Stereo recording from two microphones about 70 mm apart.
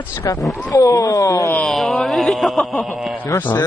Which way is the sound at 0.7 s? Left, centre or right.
Left.